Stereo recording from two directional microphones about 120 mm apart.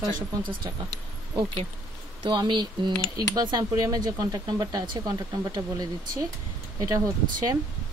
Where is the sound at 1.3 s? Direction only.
45° right (ahead or behind).